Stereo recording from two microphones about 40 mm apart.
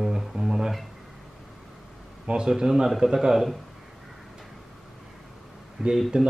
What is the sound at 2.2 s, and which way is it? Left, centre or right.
Speech, centre.